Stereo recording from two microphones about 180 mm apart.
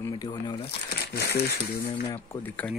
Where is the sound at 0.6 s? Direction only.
60° left (ahead or behind).